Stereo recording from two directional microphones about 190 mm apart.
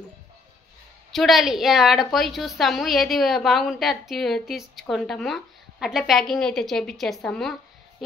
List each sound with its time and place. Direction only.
1.1 s a woman's voice: centre (ahead or behind)